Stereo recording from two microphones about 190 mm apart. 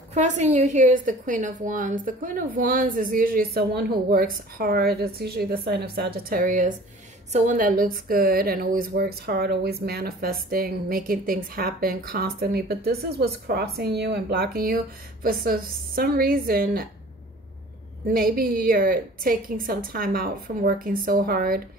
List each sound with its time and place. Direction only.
0.1 s speech: 40° right (ahead or behind)
18.0 s speech: 50° right (ahead or behind)